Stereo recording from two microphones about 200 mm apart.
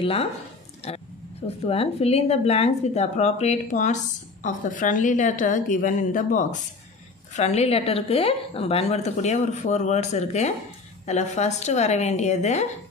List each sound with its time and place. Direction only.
0.9 s speech: 30° left (ahead or behind)